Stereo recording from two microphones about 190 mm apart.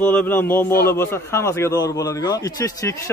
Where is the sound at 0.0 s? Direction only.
10° left (ahead or behind).